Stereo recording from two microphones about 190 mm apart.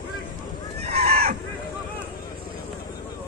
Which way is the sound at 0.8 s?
35° right (ahead or behind).